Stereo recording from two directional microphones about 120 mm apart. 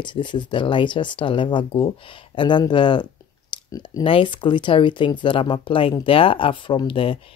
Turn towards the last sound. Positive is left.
turn(degrees=50)  # may be behind; listen again after turning